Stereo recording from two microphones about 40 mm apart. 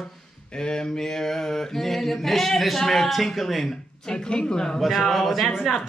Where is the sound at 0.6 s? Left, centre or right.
Centre.